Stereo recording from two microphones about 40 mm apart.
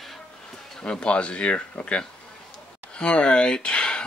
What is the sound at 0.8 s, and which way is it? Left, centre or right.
Speech, left.